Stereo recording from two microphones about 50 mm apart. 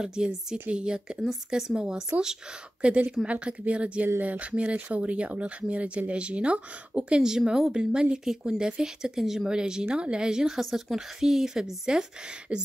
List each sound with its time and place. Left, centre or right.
0.0 s speech: centre
1.2 s speech: centre
2.8 s speech: right